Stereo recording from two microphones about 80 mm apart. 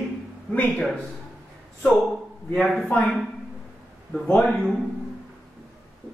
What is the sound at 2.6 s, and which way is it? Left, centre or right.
Speech, centre.